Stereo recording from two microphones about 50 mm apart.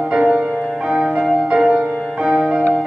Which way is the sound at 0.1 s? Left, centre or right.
Right.